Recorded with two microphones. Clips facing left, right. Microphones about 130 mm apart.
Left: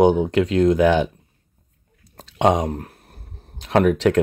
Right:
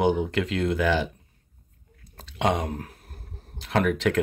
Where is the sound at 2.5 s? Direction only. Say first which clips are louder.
Left 6 dB; 35° left (ahead or behind).